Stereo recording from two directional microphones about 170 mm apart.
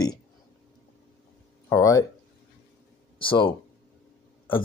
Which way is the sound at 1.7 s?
20° left (ahead or behind).